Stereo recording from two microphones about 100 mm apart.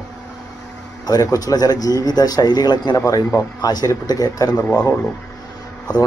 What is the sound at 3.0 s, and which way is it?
Speech, 30° left (ahead or behind).